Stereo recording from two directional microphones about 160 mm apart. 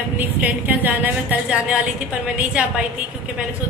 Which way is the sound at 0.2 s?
10° right (ahead or behind).